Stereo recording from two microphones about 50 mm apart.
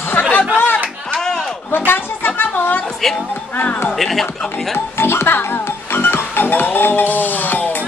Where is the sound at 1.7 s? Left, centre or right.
Left.